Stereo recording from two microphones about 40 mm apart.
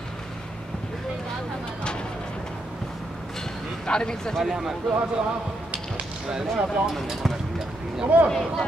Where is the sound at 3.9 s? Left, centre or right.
Centre.